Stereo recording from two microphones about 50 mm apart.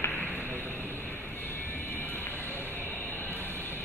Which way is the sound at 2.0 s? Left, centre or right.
Left.